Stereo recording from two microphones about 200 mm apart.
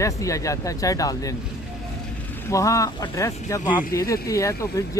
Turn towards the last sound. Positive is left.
turn(degrees=15)  # may be behind; listen again after turning